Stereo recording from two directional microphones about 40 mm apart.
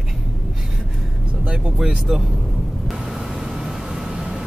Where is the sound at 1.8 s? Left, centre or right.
Right.